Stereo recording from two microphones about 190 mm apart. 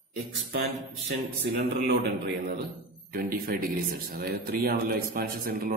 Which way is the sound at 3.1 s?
50° right (ahead or behind).